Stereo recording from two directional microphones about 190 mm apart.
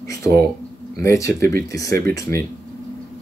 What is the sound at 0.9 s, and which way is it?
Speech, 15° left (ahead or behind).